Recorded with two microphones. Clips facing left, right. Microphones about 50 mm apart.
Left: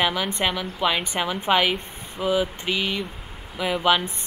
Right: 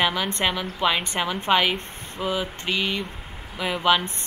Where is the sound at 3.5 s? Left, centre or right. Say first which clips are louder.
Even; centre.